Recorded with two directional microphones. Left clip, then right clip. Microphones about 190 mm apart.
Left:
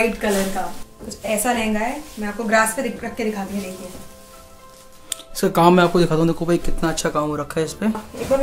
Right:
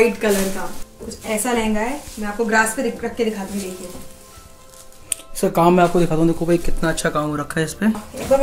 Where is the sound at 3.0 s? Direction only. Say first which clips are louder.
Right 4 dB; 55° left (ahead or behind).